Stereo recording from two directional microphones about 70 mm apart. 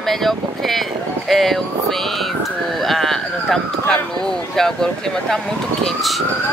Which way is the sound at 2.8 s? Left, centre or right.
Centre.